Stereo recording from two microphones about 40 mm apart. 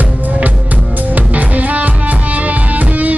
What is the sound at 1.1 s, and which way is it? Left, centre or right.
Music, right.